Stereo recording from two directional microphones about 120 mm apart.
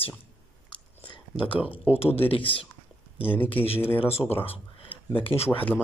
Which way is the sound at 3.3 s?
15° left (ahead or behind).